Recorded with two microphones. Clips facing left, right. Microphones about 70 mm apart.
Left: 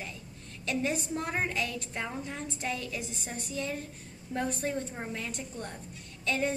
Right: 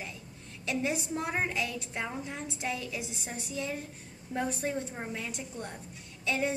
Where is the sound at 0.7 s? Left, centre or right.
Centre.